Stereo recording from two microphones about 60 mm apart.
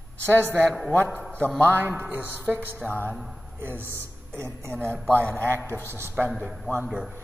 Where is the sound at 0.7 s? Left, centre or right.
Centre.